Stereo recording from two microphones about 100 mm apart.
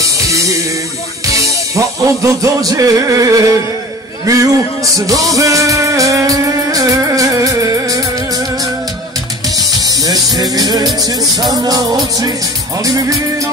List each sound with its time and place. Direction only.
0.0 s music: 30° right (ahead or behind)
9.6 s music: 40° right (ahead or behind)